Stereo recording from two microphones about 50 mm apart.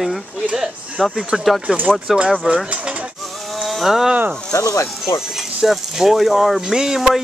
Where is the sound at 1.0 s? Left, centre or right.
Centre.